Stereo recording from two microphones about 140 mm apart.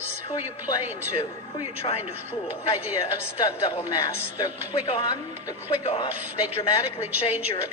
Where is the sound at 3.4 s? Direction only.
30° left (ahead or behind).